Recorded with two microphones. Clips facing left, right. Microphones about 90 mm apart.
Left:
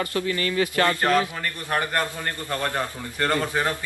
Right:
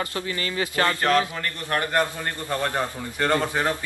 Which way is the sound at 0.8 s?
10° left (ahead or behind).